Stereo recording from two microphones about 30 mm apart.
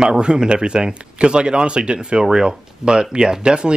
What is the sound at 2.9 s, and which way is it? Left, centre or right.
Speech, right.